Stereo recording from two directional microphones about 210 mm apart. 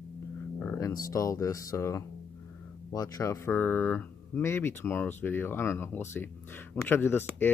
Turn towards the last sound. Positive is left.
turn(degrees=10)  # may be behind; listen again after turning